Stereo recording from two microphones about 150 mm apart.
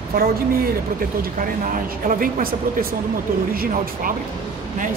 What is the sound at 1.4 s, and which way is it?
Speech, 65° right (ahead or behind).